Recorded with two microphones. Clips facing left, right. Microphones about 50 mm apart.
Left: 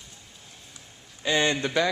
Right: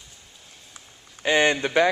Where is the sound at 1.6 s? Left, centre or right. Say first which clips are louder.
Right 5 dB; right.